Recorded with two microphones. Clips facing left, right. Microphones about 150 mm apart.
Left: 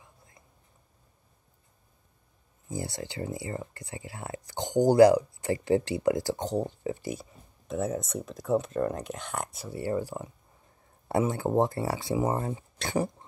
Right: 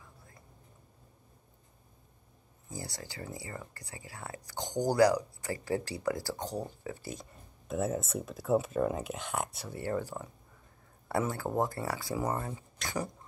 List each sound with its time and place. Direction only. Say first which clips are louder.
2.7 s speech: left 8 dB; 25° left (ahead or behind)
7.2 s speech: left 2 dB; centre (ahead or behind)
9.8 s speech: left 4 dB; 10° left (ahead or behind)